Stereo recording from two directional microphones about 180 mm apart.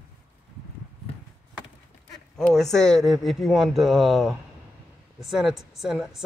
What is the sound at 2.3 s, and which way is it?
A woman's voice, 5° left (ahead or behind).